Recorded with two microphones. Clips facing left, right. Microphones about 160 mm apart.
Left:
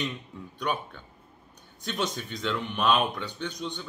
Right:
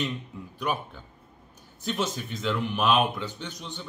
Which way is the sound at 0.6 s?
5° right (ahead or behind).